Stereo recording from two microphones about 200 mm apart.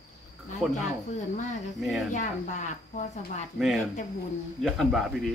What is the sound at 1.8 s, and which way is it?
Speech, centre (ahead or behind).